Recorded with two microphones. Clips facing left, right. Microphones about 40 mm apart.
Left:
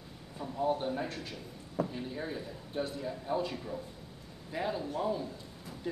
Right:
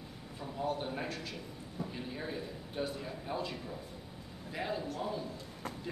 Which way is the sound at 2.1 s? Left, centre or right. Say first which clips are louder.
Left 1 dB; centre.